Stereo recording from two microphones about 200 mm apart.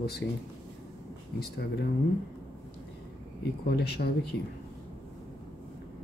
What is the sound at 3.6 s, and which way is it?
Speech, 55° left (ahead or behind).